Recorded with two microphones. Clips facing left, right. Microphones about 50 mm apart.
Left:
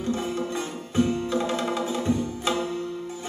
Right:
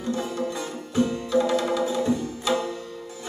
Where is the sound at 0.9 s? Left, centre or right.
Left.